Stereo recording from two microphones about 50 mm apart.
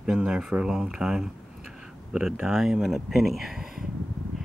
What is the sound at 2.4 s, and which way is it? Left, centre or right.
Speech, centre.